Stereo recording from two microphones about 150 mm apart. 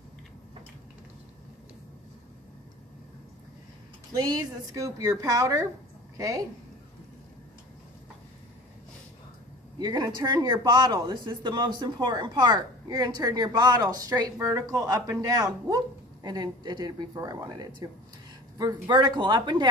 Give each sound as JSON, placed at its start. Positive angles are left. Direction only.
{"t": 4.1, "sound": "a woman's voice", "side_deg": -25}
{"t": 9.8, "sound": "a woman's voice", "side_deg": -25}